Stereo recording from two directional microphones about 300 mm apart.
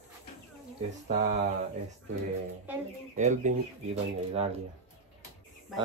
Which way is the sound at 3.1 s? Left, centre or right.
Right.